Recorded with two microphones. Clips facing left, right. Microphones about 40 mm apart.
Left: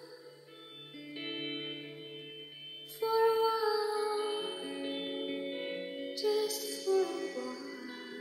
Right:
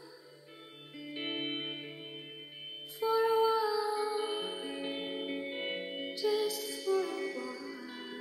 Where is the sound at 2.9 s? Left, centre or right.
Right.